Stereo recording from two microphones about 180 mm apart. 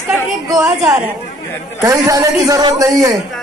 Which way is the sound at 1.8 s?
15° right (ahead or behind).